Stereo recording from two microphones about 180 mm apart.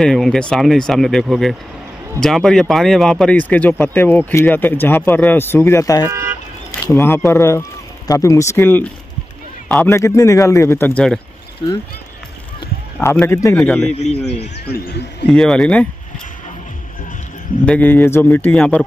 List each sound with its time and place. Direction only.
0.0 s speech: centre (ahead or behind); by 6.0 s 15° left (ahead or behind)
6.0 s car alarm: 15° right (ahead or behind)
6.9 s speech: 10° left (ahead or behind)
11.6 s speech: 25° left (ahead or behind)
13.0 s speech: 10° left (ahead or behind)
14.7 s speech: 65° left (ahead or behind)
15.2 s speech: 5° left (ahead or behind)
17.6 s speech: 10° left (ahead or behind)